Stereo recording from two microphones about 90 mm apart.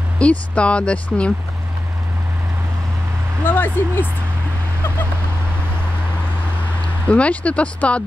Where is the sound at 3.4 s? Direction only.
25° left (ahead or behind).